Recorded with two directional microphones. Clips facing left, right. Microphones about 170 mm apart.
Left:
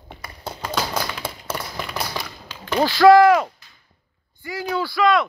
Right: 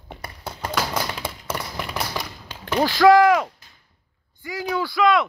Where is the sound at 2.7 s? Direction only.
5° left (ahead or behind).